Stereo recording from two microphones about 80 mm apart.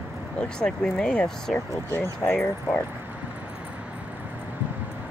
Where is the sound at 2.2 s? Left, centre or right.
Left.